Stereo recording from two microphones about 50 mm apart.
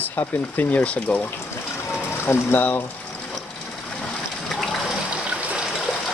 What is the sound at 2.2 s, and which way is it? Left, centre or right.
Speech, left.